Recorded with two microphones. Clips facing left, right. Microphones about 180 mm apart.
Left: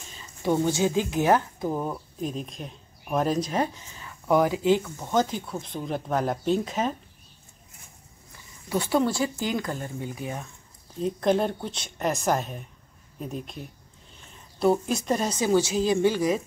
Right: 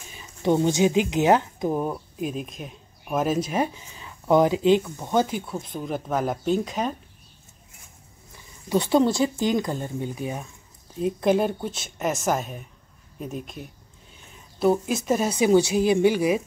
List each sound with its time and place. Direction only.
0.1 s speech: 15° right (ahead or behind)
1.9 s speech: 5° right (ahead or behind)
8.6 s speech: 20° right (ahead or behind)
11.0 s speech: 10° right (ahead or behind)